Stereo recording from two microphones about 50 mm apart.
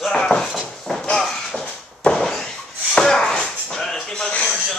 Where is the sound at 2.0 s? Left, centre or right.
Centre.